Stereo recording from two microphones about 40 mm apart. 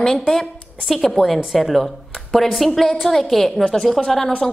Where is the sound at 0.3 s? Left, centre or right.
Centre.